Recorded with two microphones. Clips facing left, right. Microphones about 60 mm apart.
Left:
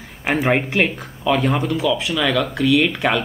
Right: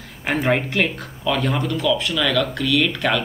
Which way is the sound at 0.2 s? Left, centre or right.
Centre.